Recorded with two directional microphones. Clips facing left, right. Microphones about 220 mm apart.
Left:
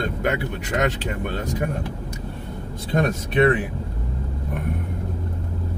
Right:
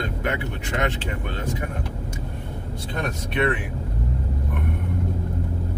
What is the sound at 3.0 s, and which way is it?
Speech, 45° left (ahead or behind).